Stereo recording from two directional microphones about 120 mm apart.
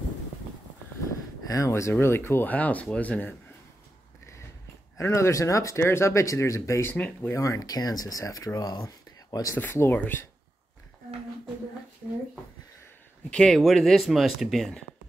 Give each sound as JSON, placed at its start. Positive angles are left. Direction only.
{"t": 1.5, "sound": "speech", "side_deg": 25}
{"t": 4.9, "sound": "speech", "side_deg": 25}
{"t": 13.3, "sound": "speech", "side_deg": 5}